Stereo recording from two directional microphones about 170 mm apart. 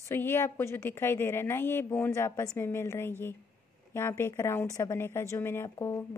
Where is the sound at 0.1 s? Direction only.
15° left (ahead or behind).